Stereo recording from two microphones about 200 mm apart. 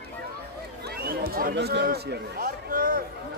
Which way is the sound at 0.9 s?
50° right (ahead or behind).